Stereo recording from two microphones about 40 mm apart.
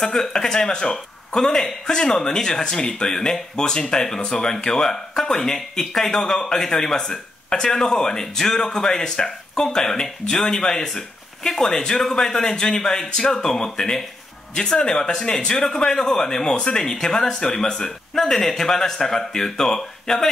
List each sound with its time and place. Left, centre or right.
0.0 s speech: centre
11.7 s speech: left